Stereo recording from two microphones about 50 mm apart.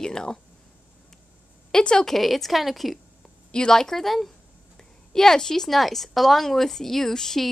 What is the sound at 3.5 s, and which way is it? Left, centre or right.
A woman's voice, centre.